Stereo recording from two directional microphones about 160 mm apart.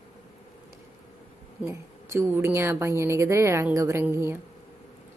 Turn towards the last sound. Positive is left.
turn(degrees=-15)  # may be behind; listen again after turning